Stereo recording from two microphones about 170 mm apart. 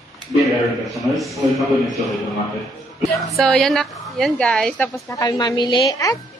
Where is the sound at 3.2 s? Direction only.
Centre (ahead or behind).